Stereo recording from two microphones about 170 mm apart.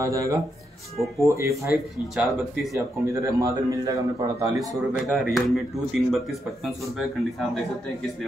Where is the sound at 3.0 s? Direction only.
20° right (ahead or behind).